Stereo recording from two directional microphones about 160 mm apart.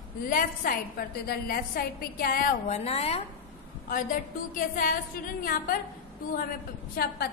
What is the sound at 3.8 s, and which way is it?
A woman's voice, 55° left (ahead or behind).